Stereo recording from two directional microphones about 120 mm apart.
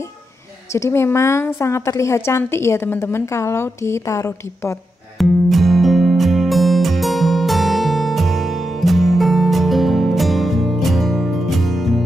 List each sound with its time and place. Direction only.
0.7 s a woman's voice: 20° left (ahead or behind)
5.2 s music: centre (ahead or behind)